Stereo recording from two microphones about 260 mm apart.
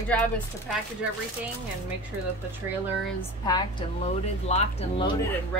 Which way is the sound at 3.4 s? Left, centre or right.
Centre.